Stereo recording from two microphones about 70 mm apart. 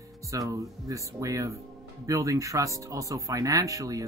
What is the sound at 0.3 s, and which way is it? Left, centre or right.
Speech, right.